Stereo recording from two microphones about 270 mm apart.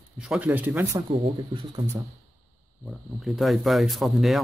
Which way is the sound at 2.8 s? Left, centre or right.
Centre.